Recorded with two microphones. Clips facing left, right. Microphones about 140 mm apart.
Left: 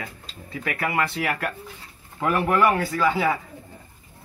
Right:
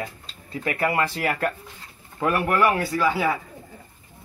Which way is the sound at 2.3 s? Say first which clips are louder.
Left 1 dB; 10° right (ahead or behind).